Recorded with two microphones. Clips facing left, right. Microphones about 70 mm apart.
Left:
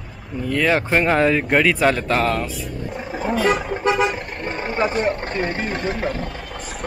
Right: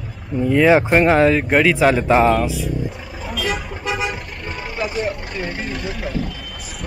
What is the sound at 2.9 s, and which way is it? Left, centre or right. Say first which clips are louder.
Roaring cats: left 6 dB; left.